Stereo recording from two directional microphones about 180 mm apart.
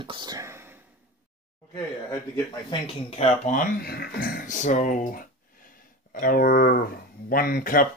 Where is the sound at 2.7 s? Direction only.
35° left (ahead or behind).